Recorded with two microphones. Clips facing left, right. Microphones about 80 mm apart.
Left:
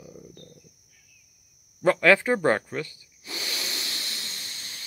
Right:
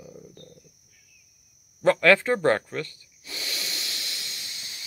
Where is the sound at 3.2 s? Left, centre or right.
Left.